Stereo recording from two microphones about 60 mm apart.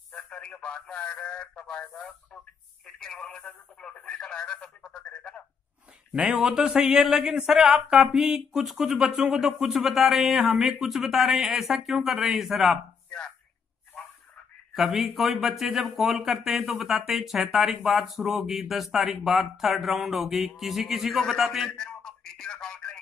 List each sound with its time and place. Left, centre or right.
0.1 s speech: centre
6.1 s speech: centre
14.7 s speech: centre
21.6 s a sound: centre